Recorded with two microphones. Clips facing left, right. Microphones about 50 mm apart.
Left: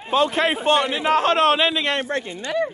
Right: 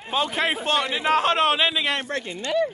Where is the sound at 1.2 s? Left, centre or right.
Centre.